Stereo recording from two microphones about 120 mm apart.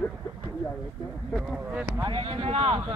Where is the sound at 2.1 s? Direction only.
45° right (ahead or behind).